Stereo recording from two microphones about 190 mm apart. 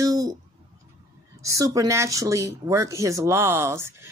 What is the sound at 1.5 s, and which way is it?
Speech, 15° right (ahead or behind).